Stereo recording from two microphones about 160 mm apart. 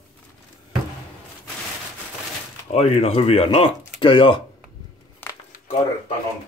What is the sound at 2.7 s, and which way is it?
Speech, 40° left (ahead or behind).